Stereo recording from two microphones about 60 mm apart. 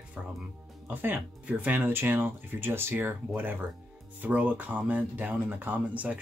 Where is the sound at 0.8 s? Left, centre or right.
Right.